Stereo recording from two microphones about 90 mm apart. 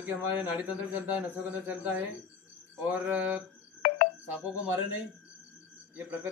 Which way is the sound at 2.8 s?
15° right (ahead or behind).